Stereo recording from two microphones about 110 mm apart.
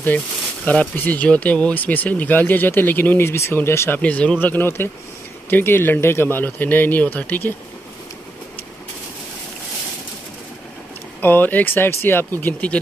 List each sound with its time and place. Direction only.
0.7 s speech: 15° left (ahead or behind)
4.0 s speech: 10° left (ahead or behind)
11.1 s speech: 15° left (ahead or behind)